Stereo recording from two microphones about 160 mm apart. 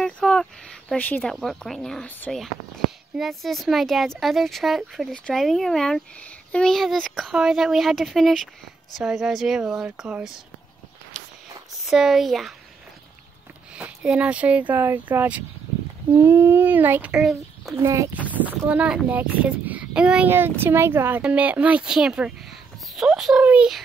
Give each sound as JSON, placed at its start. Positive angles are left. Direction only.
{"t": 0.0, "sound": "speech", "side_deg": 5}
{"t": 11.8, "sound": "speech", "side_deg": 0}
{"t": 13.7, "sound": "a child's voice", "side_deg": -5}
{"t": 17.7, "sound": "a child's voice", "side_deg": -20}